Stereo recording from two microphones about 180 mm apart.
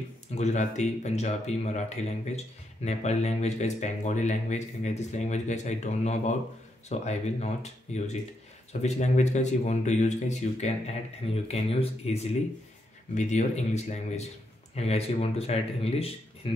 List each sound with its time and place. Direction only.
0.3 s speech: 40° left (ahead or behind)